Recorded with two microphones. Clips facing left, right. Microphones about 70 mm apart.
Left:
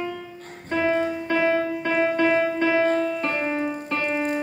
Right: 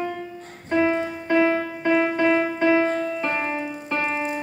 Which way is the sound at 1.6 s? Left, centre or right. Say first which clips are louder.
Left 3 dB; right.